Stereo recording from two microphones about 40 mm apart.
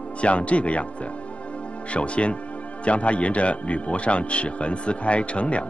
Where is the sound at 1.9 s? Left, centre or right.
Left.